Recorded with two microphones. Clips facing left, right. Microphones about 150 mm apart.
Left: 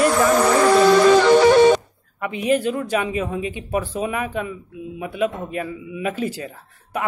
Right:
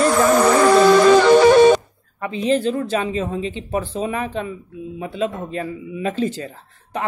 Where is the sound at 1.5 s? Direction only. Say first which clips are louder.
Right 2 dB; 50° right (ahead or behind).